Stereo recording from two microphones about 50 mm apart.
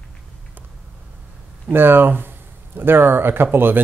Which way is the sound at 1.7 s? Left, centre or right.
Right.